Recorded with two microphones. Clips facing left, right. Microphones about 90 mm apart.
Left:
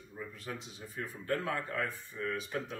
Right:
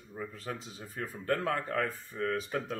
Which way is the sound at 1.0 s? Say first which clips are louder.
Right 3 dB; 45° right (ahead or behind).